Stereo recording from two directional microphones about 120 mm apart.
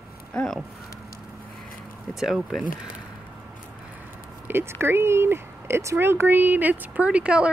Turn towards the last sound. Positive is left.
turn(degrees=-10)  # may be behind; listen again after turning